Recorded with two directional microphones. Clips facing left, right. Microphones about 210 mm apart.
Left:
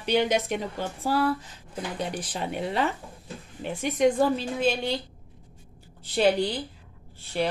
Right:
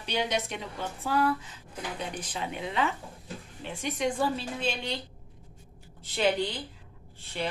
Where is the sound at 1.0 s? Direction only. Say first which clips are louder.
Left 2 dB; 35° left (ahead or behind).